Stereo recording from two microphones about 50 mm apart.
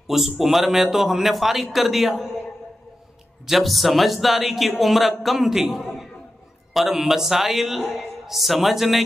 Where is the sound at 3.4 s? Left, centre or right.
Centre.